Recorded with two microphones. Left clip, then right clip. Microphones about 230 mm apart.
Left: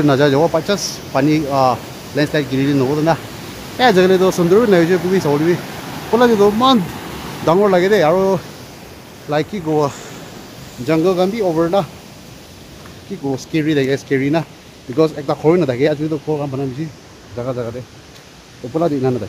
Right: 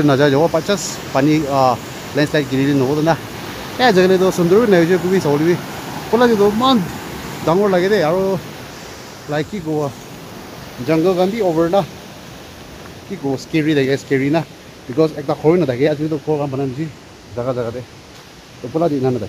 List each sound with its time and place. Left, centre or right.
0.0 s speech: centre
10.9 s speech: centre
13.3 s speech: centre
18.7 s speech: centre